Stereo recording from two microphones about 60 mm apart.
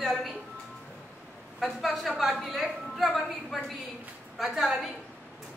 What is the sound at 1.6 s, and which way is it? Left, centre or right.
Speech, centre.